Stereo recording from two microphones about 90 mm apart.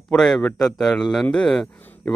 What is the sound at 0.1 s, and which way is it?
Speech, 5° left (ahead or behind).